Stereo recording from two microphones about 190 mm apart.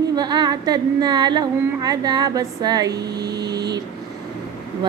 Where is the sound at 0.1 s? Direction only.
20° right (ahead or behind).